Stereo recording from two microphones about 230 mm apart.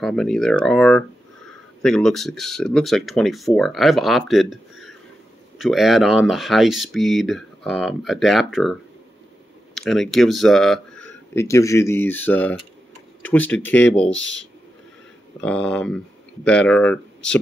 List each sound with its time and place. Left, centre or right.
0.0 s speech: centre
9.8 s speech: centre
14.1 s speech: left
15.4 s speech: centre